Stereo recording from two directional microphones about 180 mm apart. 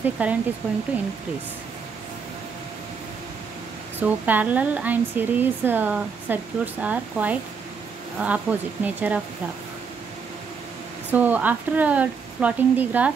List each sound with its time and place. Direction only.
0.2 s speech: 10° right (ahead or behind)
4.0 s speech: 10° right (ahead or behind)
11.1 s speech: 10° right (ahead or behind)